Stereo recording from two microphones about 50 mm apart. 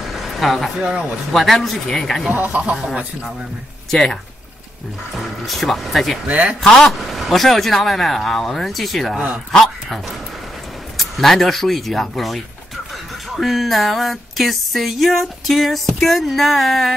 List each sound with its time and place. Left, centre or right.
0.0 s a sound: centre
0.7 s speech: right
1.3 s speech: centre
2.3 s speech: right
3.9 s speech: centre
5.1 s speech: centre
6.2 s speech: right
6.9 s speech: centre
11.0 s speech: centre
13.4 s speech: centre